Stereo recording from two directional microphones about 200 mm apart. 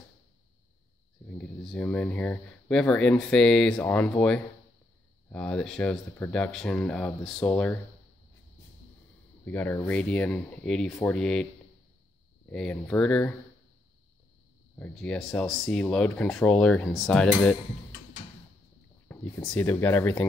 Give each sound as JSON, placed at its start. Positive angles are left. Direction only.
{"t": 1.2, "sound": "speech", "side_deg": 5}
{"t": 9.4, "sound": "speech", "side_deg": 10}
{"t": 12.4, "sound": "speech", "side_deg": 5}
{"t": 14.8, "sound": "speech", "side_deg": 5}
{"t": 19.0, "sound": "speech", "side_deg": 10}